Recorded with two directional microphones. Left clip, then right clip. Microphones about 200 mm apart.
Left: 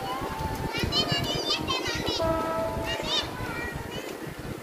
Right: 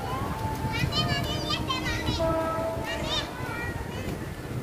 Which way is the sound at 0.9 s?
30° right (ahead or behind).